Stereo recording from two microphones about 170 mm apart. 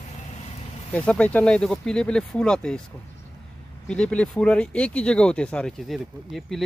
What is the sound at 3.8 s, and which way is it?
Speech, 5° left (ahead or behind).